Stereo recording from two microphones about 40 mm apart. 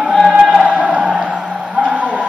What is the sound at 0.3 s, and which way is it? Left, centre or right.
Music, right.